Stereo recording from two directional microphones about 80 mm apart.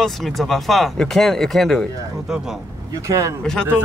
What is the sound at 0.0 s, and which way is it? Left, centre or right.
Speech, centre.